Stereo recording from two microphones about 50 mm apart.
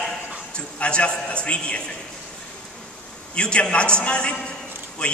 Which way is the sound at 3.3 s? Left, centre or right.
Centre.